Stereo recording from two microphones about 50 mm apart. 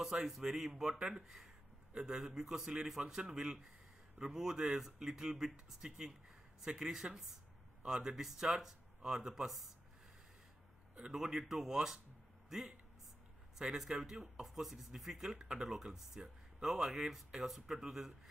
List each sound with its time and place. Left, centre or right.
0.0 s speech: centre
11.0 s speech: centre